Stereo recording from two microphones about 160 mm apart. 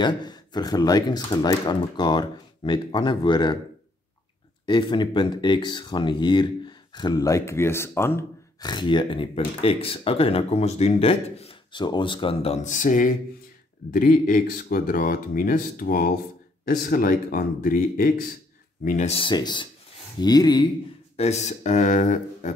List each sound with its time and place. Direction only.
0.0 s speech: 25° left (ahead or behind)
4.6 s speech: 30° left (ahead or behind); by 18.2 s 60° left (ahead or behind)
18.9 s speech: 45° left (ahead or behind); by 20.6 s 25° left (ahead or behind)
21.2 s speech: 45° left (ahead or behind)